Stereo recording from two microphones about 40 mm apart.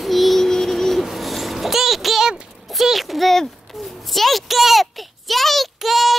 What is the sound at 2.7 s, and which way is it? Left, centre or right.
Speech, centre.